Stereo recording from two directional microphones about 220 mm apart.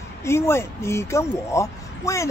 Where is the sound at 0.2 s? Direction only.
10° left (ahead or behind).